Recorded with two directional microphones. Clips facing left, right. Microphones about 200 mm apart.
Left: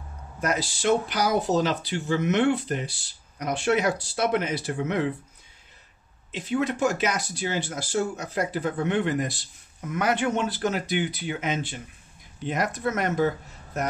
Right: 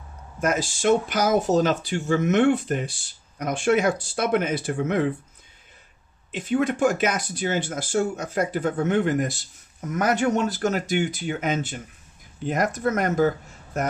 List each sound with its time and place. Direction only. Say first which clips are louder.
0.4 s speech: right 3 dB; 50° right (ahead or behind)
6.3 s speech: right 3 dB; 50° right (ahead or behind)